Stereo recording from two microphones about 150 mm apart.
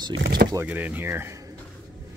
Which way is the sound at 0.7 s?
10° right (ahead or behind).